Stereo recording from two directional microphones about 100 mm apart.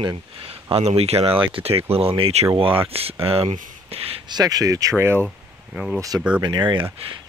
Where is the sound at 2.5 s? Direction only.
65° right (ahead or behind).